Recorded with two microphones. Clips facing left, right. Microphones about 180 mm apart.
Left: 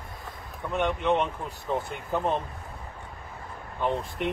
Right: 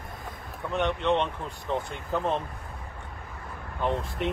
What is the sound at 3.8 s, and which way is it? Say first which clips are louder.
Speech: even; centre (ahead or behind).